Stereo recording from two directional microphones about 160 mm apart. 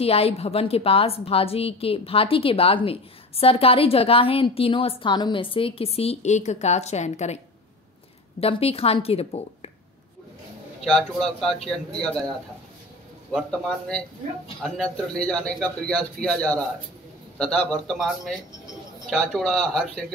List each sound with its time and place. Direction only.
0.0 s a woman's voice: 35° left (ahead or behind)
8.4 s a woman's voice: 35° left (ahead or behind)
10.9 s a man's voice: centre (ahead or behind)
13.3 s a man's voice: 5° left (ahead or behind)